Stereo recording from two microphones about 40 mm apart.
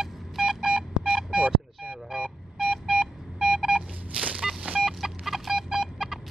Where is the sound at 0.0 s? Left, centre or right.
Centre.